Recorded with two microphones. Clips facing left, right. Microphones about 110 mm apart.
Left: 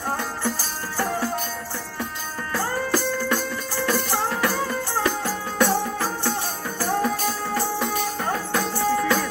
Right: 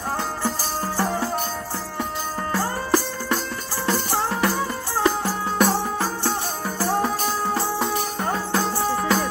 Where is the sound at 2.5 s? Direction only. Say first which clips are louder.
Right 1 dB; 25° right (ahead or behind).